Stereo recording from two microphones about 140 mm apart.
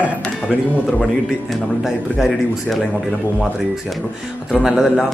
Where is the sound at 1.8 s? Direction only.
5° right (ahead or behind).